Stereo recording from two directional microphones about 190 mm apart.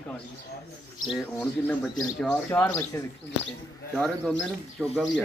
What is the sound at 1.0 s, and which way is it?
Speech, centre (ahead or behind).